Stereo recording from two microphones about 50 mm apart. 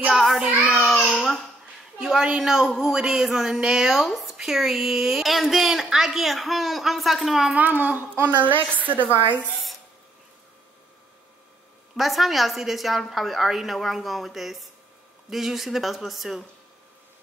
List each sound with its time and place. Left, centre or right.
0.1 s child singing: centre
1.1 s babbling: centre
2.1 s a woman's voice: centre
7.5 s a woman's voice: right
12.0 s a woman's voice: centre